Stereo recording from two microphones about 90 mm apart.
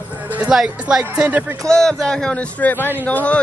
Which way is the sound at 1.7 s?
5° left (ahead or behind).